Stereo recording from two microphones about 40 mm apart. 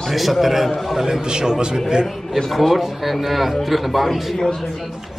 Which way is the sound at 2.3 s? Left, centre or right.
Centre.